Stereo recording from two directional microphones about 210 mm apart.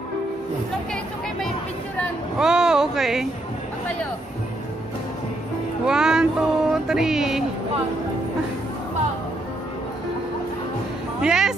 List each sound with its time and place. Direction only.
2.0 s speech: 5° right (ahead or behind)
5.9 s speech: 5° right (ahead or behind)
11.1 s speech: 5° right (ahead or behind)